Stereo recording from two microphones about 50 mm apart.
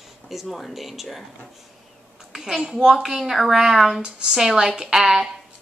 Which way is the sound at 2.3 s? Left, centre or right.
Centre.